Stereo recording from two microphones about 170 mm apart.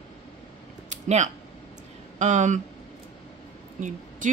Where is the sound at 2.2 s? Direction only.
45° right (ahead or behind).